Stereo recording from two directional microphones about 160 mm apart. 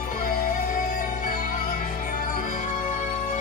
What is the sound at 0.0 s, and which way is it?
Music, 60° left (ahead or behind).